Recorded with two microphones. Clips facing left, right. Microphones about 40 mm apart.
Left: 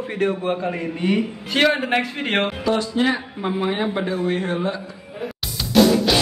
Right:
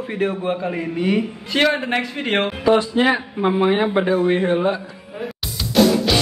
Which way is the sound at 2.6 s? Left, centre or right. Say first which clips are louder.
Right 7 dB; right.